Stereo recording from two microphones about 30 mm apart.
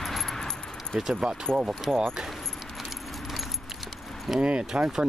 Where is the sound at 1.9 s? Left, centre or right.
Right.